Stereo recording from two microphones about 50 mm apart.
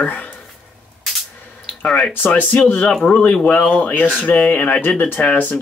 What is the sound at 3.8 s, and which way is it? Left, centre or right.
Speech, left.